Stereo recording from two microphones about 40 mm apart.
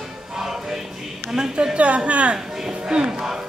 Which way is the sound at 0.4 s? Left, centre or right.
Centre.